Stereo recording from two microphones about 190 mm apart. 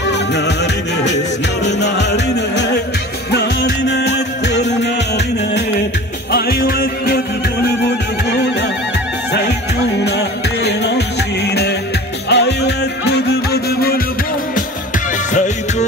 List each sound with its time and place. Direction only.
1.6 s music: 65° left (ahead or behind)
10.0 s music: 60° left (ahead or behind)
15.3 s music: 40° left (ahead or behind)